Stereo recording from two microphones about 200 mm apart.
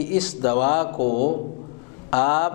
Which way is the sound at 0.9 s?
40° left (ahead or behind).